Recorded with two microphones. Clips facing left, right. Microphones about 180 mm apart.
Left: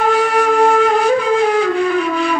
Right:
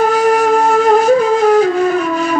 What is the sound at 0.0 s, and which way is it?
Flute, 40° right (ahead or behind).